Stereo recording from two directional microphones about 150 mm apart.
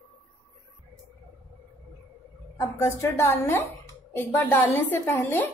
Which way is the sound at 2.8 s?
20° left (ahead or behind).